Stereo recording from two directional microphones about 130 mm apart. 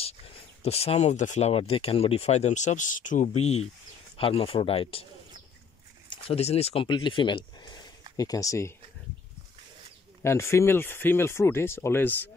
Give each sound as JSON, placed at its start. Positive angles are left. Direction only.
{"t": 0.6, "sound": "speech", "side_deg": 50}
{"t": 3.3, "sound": "speech", "side_deg": 55}
{"t": 6.0, "sound": "speech", "side_deg": 50}
{"t": 10.2, "sound": "speech", "side_deg": 20}